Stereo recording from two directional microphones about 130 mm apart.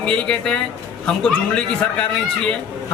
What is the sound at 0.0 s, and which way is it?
A man's voice, 5° left (ahead or behind).